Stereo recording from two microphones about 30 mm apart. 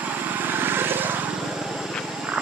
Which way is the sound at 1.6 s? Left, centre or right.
Centre.